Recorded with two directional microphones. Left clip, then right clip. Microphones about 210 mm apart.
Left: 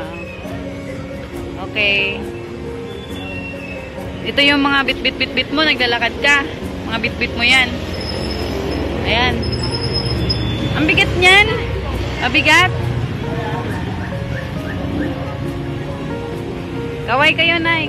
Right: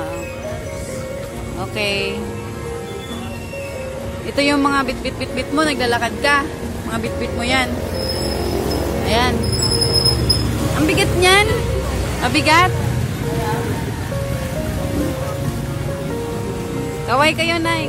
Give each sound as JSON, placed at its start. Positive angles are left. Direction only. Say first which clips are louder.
{"t": 1.8, "sound": "speech", "louder": "left 5 dB", "side_deg": -25}
{"t": 4.4, "sound": "speech", "louder": "left 3 dB", "side_deg": -15}
{"t": 9.0, "sound": "speech", "louder": "left 2 dB", "side_deg": -25}
{"t": 10.9, "sound": "speech", "louder": "left 3 dB", "side_deg": -20}
{"t": 17.1, "sound": "speech", "louder": "left 3 dB", "side_deg": -15}